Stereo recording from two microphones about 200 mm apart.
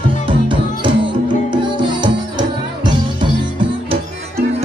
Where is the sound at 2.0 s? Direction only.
20° right (ahead or behind).